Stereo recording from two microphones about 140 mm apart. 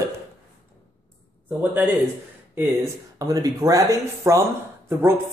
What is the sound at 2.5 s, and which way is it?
A man's voice, 25° right (ahead or behind).